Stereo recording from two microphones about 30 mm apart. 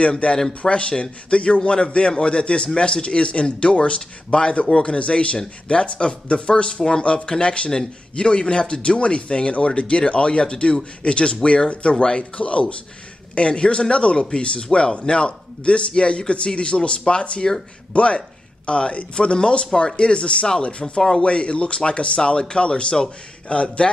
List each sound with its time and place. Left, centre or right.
0.2 s speech: left
19.1 s speech: left
20.8 s speech: left
21.2 s speech: left